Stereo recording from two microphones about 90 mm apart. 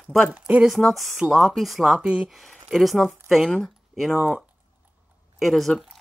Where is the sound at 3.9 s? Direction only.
Centre (ahead or behind).